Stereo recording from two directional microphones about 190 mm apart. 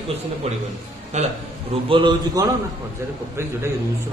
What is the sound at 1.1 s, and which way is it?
Speech, 35° right (ahead or behind).